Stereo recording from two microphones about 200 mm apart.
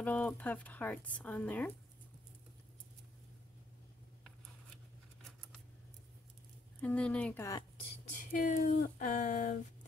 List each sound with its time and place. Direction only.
0.0 s speech: 5° left (ahead or behind)
6.8 s speech: 5° left (ahead or behind)
8.3 s a sound: 40° left (ahead or behind)